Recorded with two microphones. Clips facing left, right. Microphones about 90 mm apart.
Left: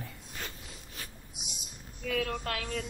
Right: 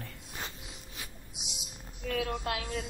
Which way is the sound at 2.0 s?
15° right (ahead or behind).